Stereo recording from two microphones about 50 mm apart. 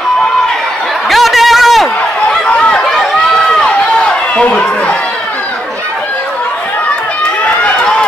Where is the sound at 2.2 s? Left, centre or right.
Left.